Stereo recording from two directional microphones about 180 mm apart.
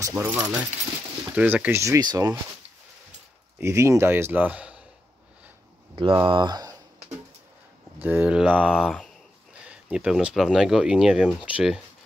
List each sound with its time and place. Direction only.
0.0 s speech: 10° right (ahead or behind)
3.5 s speech: 15° right (ahead or behind)
5.9 s speech: 25° right (ahead or behind)
8.0 s speech: 10° right (ahead or behind)